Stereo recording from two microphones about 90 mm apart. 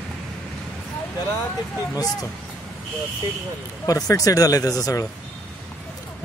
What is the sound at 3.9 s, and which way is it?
Speech, 40° left (ahead or behind).